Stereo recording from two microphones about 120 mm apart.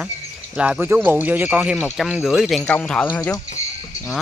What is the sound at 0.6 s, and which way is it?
Speech, 10° right (ahead or behind).